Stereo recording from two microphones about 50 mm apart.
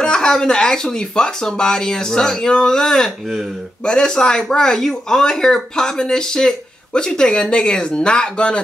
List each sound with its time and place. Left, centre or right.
0.0 s speech: centre